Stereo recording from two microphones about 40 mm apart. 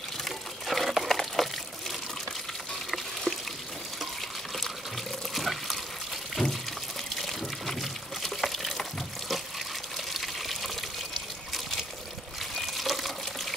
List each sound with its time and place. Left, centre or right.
0.2 s a sound: centre
0.8 s water: centre
3.3 s pour: centre
5.3 s water: centre
6.4 s pour: centre
7.2 s water: centre
9.9 s water: centre
12.5 s water: centre